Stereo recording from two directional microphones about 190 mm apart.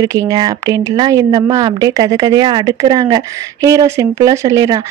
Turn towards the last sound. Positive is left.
turn(degrees=-20)  # may be behind; listen again after turning